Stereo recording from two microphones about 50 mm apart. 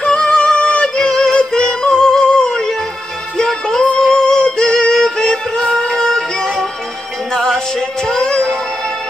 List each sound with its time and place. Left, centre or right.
0.0 s yodeling: centre
3.3 s music: centre